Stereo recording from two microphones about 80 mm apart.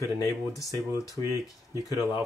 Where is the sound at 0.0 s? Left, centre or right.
Left.